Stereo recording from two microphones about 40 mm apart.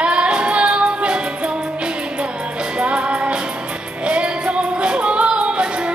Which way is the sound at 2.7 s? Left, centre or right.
Right.